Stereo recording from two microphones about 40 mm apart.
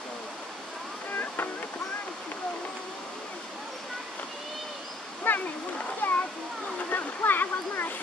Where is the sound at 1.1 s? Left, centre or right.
Left.